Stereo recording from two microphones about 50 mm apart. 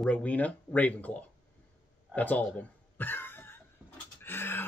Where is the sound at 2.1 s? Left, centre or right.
Left.